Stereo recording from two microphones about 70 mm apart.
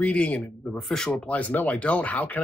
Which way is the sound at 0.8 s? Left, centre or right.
Centre.